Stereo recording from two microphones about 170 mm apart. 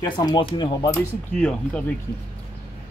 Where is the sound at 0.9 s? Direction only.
5° left (ahead or behind).